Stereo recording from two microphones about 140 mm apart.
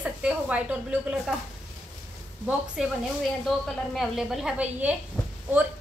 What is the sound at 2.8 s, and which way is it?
A woman's voice, 5° right (ahead or behind).